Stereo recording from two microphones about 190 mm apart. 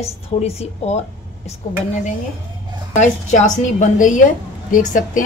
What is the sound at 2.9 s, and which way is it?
A woman's voice, 40° left (ahead or behind).